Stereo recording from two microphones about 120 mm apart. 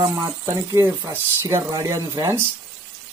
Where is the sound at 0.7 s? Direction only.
20° right (ahead or behind).